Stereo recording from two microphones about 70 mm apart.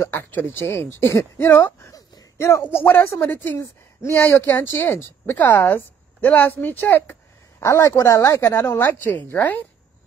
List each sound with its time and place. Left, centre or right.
0.1 s a woman's voice: left
2.6 s a woman's voice: left
7.6 s a woman's voice: left